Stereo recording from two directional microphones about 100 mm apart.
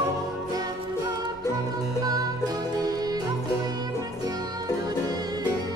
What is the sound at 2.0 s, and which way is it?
Music, 40° right (ahead or behind).